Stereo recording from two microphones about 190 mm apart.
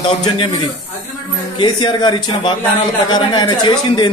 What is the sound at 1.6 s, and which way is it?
Speech, 20° left (ahead or behind).